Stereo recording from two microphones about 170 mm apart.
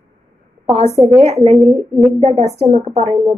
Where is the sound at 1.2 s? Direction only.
40° right (ahead or behind).